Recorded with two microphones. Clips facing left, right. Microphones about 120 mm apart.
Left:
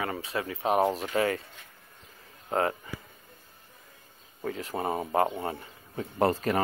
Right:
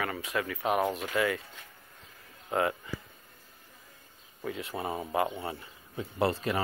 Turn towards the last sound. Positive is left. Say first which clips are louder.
# left 3 dB
turn(degrees=40)  # may be behind; listen again after turning